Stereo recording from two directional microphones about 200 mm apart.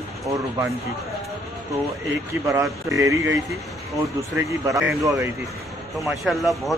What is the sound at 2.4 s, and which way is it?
Speech, 15° right (ahead or behind).